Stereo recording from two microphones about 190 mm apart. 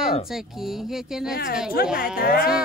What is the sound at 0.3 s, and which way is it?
Speech, centre (ahead or behind).